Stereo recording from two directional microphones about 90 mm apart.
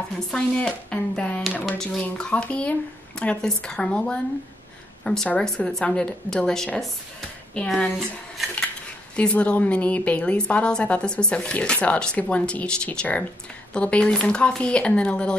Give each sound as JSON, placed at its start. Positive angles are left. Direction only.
{"t": 0.3, "sound": "speech", "side_deg": 10}
{"t": 1.5, "sound": "a sound", "side_deg": 20}
{"t": 1.8, "sound": "a woman's voice", "side_deg": 10}
{"t": 9.1, "sound": "speech", "side_deg": 10}